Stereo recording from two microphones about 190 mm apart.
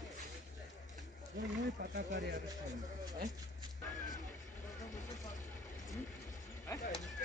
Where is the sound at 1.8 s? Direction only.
60° right (ahead or behind).